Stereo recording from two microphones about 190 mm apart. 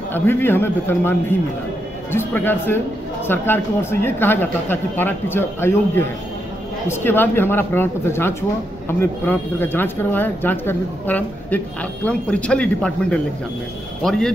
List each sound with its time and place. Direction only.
0.1 s speech: 10° left (ahead or behind)
2.1 s speech: 10° left (ahead or behind)